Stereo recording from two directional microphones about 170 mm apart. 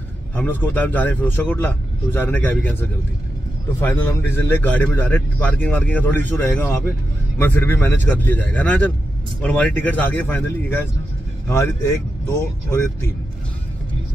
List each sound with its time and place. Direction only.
0.4 s a man's voice: 10° left (ahead or behind)
3.8 s a man's voice: 10° left (ahead or behind)